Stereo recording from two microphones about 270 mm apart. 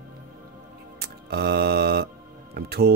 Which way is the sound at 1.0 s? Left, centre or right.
Right.